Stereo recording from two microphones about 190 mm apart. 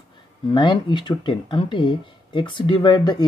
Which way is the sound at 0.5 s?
25° left (ahead or behind).